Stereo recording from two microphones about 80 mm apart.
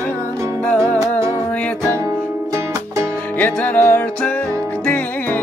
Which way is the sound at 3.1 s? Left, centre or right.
Centre.